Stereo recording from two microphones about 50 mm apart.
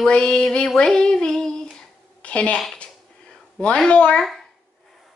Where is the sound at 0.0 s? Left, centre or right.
Centre.